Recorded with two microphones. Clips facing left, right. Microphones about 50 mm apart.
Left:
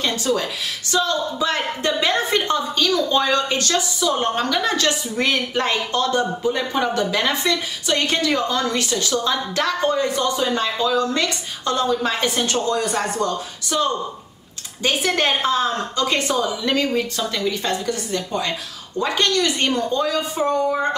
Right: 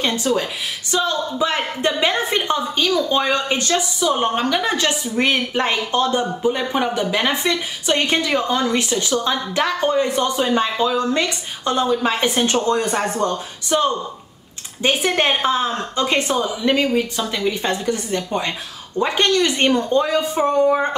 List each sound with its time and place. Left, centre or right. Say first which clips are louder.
0.0 s speech: right 2 dB; right